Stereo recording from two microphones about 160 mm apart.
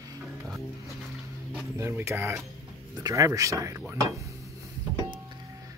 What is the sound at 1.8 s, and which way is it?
Speech, 15° right (ahead or behind).